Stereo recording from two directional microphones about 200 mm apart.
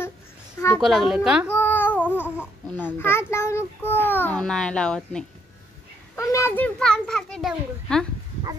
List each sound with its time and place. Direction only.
0.7 s a child's voice: centre (ahead or behind)
1.5 s a child's voice: 10° left (ahead or behind)